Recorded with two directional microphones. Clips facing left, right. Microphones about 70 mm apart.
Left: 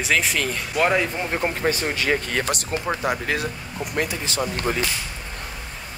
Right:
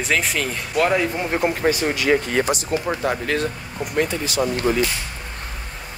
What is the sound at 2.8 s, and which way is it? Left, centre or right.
Speech, centre.